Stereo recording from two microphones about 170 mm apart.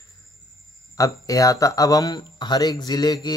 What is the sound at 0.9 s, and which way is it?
Speech, 20° left (ahead or behind).